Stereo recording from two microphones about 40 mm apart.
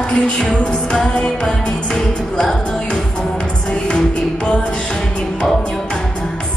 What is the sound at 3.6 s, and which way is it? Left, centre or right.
Music, left.